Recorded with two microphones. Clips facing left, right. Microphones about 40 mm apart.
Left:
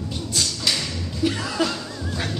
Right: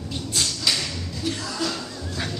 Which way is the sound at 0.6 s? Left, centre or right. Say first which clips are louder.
Even; centre.